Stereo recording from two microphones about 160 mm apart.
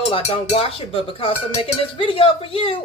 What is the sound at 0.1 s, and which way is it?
Speech, 35° left (ahead or behind).